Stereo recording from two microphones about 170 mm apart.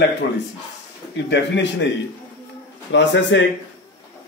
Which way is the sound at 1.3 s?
90° left.